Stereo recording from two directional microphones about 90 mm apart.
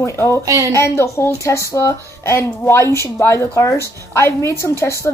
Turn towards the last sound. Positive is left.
turn(degrees=30)  # may be behind; listen again after turning